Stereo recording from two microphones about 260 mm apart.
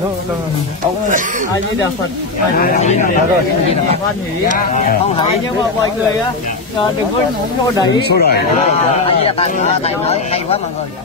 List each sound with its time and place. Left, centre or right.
2.5 s speech: left
4.6 s speech: left
8.1 s speech: left
8.9 s speech: left